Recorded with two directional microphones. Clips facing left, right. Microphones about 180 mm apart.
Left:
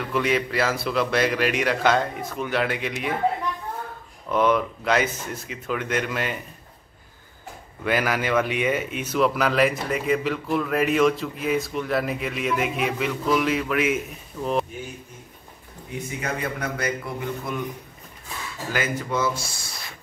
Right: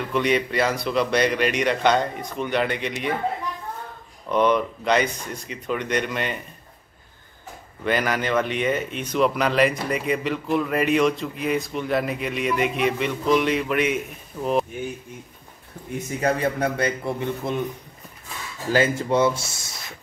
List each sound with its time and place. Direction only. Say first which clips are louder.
0.1 s speech: right 1 dB; centre (ahead or behind)
4.3 s speech: right 1 dB; centre (ahead or behind)
7.8 s speech: even; 5° left (ahead or behind)
16.1 s a man's voice: right 7 dB; 35° right (ahead or behind)
18.7 s speech: right 6 dB; 30° right (ahead or behind)